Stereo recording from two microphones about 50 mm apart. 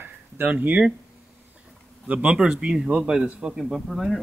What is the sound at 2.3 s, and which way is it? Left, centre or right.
Speech, centre.